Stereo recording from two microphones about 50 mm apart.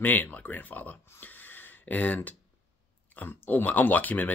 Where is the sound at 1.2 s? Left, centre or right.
Left.